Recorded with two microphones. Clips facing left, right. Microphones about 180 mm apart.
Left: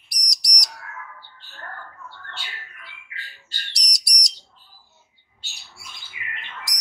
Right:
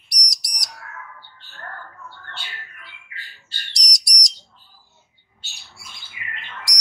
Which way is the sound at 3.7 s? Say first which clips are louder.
Right 3 dB; 5° left (ahead or behind).